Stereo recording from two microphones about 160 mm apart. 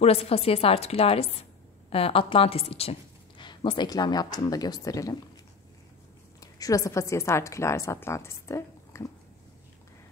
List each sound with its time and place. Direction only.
0.0 s a woman's voice: 40° left (ahead or behind); by 5.1 s 20° left (ahead or behind)
6.4 s a woman's voice: 20° left (ahead or behind)